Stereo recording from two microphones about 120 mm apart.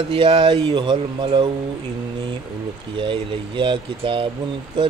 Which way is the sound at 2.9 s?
40° right (ahead or behind).